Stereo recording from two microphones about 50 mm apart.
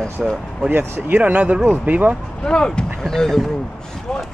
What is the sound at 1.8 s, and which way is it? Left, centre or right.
Speech, right.